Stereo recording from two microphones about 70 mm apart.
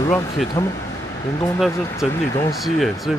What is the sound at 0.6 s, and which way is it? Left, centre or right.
Speech, left.